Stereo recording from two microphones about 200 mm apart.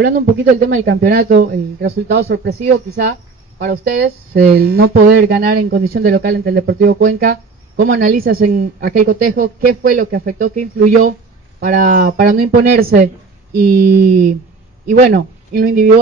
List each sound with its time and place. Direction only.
0.0 s speech: 65° right (ahead or behind)
1.1 s a woman's voice: 55° right (ahead or behind)
7.7 s speech: 60° right (ahead or behind)
8.1 s a woman's voice: 50° right (ahead or behind)